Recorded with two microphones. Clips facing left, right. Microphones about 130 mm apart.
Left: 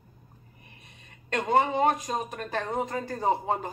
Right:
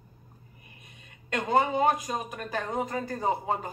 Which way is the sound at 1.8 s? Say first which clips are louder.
Left 1 dB; 10° right (ahead or behind).